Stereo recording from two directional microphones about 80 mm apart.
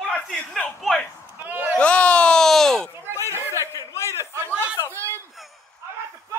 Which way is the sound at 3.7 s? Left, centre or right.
Left.